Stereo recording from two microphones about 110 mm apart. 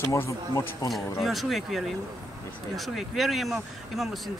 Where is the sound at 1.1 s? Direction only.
Centre (ahead or behind).